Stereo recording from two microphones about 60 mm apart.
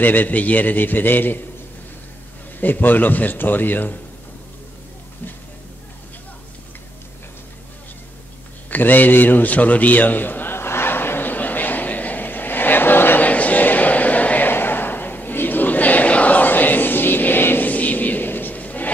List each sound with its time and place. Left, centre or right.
0.0 s a man's voice: left
2.6 s a man's voice: left
8.6 s a sound: left